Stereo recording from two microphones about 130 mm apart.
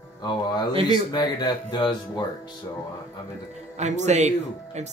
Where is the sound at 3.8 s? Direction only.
60° right (ahead or behind).